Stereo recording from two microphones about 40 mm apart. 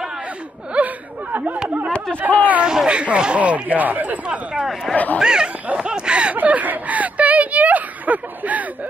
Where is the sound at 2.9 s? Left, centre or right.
Right.